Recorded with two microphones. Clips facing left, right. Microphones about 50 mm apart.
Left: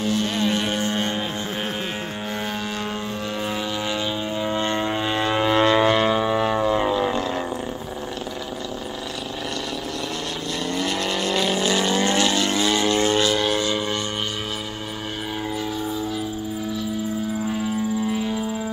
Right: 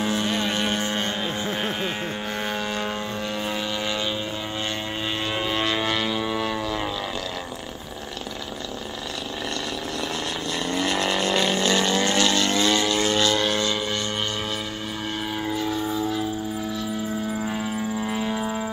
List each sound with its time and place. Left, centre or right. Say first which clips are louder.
0.0 s vehicle: left 1 dB; centre
0.3 s vehicle: left 2 dB; centre
3.4 s vehicle: left 2 dB; centre
5.2 s a sound: left 8 dB; left
10.7 s vehicle: right 1 dB; centre
12.8 s vehicle: left 2 dB; left
15.5 s a sound: right 2 dB; centre
17.5 s vehicle: left 3 dB; centre
18.4 s music: even; right